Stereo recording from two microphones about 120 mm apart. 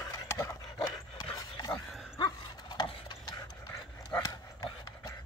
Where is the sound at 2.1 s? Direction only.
35° left (ahead or behind).